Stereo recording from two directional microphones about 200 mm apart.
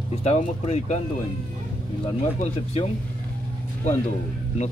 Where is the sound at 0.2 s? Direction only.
35° left (ahead or behind).